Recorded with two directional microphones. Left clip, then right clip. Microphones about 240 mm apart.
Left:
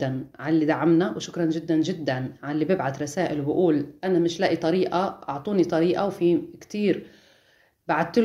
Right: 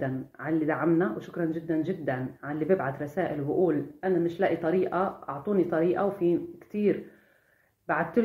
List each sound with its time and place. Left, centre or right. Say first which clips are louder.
0.0 s speech: left 4 dB; left